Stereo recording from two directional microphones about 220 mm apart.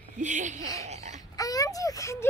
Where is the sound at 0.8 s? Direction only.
30° right (ahead or behind).